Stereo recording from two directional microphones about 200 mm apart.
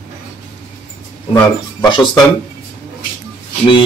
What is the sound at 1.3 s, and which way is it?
Speech, 20° left (ahead or behind).